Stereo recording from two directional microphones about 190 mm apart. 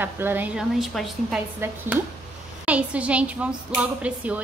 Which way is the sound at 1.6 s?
10° right (ahead or behind).